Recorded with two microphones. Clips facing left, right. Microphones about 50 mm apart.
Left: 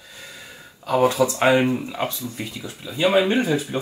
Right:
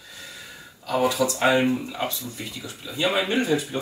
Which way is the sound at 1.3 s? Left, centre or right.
Centre.